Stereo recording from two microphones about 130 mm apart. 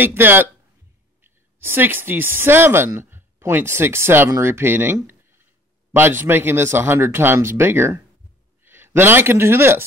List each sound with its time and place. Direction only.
0.0 s a man's voice: 15° right (ahead or behind)